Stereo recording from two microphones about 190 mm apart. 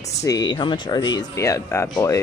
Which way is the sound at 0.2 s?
20° left (ahead or behind).